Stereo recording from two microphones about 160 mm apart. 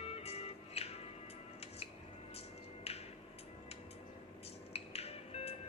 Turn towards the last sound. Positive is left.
turn(degrees=40)  # may be behind; listen again after turning